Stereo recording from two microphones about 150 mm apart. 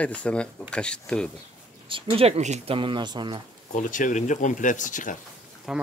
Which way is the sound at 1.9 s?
35° right (ahead or behind).